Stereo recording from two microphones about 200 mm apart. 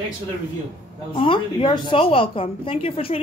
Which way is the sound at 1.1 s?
25° left (ahead or behind).